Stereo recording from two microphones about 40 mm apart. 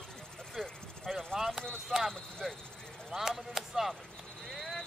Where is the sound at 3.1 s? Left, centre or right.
Centre.